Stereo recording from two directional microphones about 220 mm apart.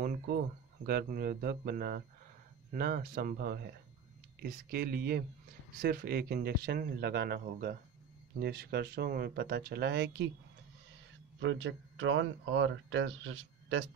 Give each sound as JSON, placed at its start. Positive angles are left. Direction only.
{"t": 0.0, "sound": "a sound", "side_deg": -40}
{"t": 0.8, "sound": "speech", "side_deg": -45}
{"t": 11.3, "sound": "speech", "side_deg": -60}